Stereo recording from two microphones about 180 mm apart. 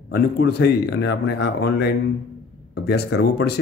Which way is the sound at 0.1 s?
65° left (ahead or behind).